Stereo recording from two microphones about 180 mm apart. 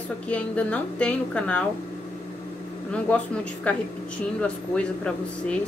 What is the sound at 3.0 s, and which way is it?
A woman's voice, 10° left (ahead or behind).